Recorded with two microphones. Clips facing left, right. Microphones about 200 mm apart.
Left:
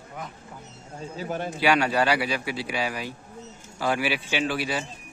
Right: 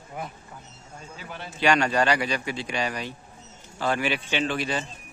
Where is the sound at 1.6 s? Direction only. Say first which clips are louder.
Right 1 dB; 5° left (ahead or behind).